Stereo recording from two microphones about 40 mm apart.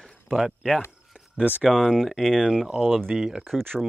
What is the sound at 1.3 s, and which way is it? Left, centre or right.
Speech, right.